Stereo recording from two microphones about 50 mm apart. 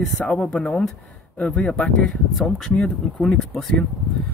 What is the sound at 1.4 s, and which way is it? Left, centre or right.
Speech, left.